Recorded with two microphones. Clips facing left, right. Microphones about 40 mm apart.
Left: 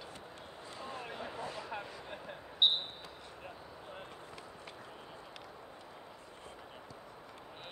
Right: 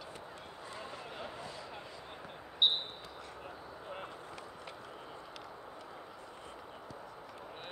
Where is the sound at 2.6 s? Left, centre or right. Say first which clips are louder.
Left 1 dB; centre.